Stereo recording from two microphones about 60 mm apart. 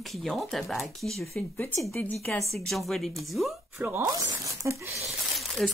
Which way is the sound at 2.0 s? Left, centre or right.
Left.